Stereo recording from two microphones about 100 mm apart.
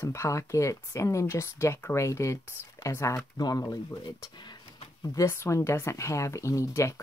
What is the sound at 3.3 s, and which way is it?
Speech, 40° left (ahead or behind).